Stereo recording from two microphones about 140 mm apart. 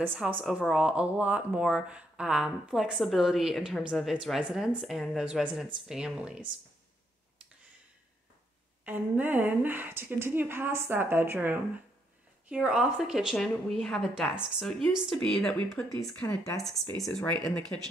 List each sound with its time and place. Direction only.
0.0 s speech: 10° right (ahead or behind)
8.8 s a woman's voice: 15° right (ahead or behind); by 15.8 s 5° left (ahead or behind)
16.2 s speech: 20° left (ahead or behind)
17.3 s speech: 5° left (ahead or behind)